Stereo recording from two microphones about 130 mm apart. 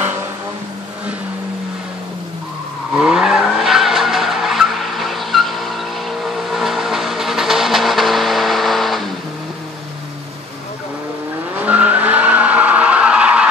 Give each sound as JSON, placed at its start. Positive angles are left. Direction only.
{"t": 3.0, "sound": "vehicle", "side_deg": -5}
{"t": 11.6, "sound": "vehicle", "side_deg": -10}